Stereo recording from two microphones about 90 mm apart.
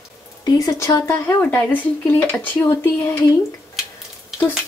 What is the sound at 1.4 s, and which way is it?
Speech, 20° left (ahead or behind).